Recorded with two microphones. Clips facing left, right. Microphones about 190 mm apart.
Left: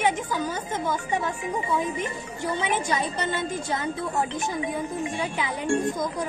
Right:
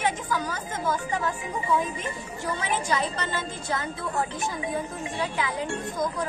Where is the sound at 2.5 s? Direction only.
25° left (ahead or behind).